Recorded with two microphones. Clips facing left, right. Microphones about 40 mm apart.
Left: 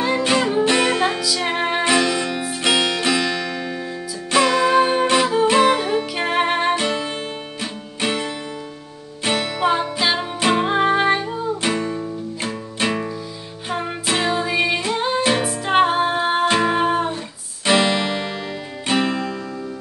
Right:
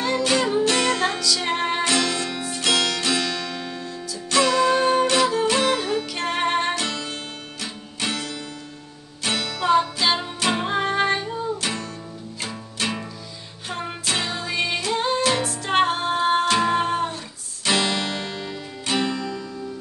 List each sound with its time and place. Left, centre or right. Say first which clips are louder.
0.0 s music: left 3 dB; centre